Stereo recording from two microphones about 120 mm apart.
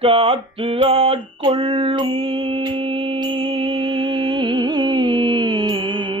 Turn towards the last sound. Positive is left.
turn(degrees=-45)  # may be behind; listen again after turning